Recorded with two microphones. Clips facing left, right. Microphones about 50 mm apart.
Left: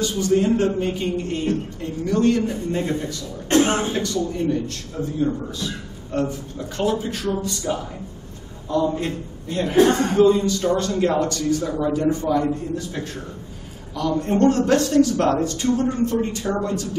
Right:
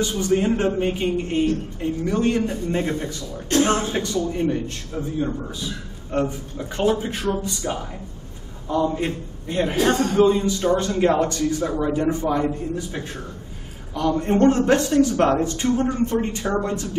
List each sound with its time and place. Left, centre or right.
0.0 s a man's voice: right
3.4 s speech: left
3.9 s a man's voice: right
6.1 s a man's voice: right